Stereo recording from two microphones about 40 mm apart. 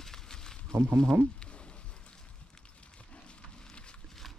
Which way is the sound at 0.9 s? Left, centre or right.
Centre.